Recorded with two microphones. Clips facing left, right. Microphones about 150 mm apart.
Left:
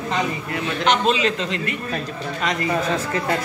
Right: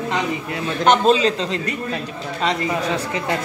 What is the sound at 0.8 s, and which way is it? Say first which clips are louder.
Speech: right 4 dB; 40° right (ahead or behind).